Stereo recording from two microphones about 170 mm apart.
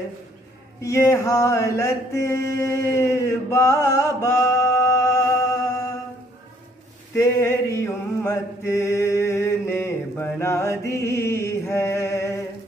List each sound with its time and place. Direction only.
0.8 s mantra: 15° left (ahead or behind)
7.2 s chant: 15° left (ahead or behind)
10.9 s a sound: 15° left (ahead or behind)